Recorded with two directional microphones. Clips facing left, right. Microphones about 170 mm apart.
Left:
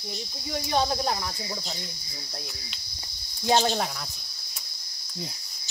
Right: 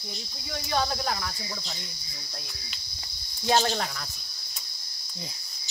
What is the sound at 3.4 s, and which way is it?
Cricket, 10° left (ahead or behind).